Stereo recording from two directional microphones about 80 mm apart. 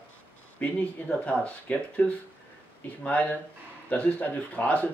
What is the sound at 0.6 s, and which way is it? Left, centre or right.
Speech, centre.